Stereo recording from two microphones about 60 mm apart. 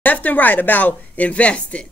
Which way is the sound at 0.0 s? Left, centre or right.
Left.